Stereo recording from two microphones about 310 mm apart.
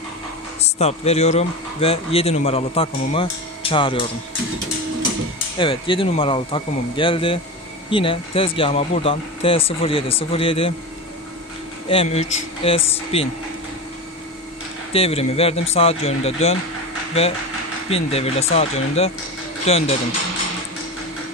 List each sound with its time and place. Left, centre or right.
0.6 s speech: centre
5.6 s speech: centre
11.9 s speech: centre
14.9 s speech: centre
17.8 s speech: centre